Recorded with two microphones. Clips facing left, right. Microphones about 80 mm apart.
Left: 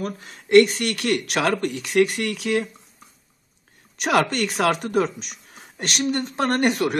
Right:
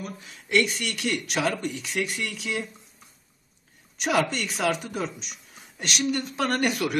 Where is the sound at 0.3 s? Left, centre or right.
Left.